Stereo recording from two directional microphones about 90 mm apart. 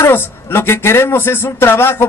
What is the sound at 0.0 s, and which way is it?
A man's voice, 25° left (ahead or behind).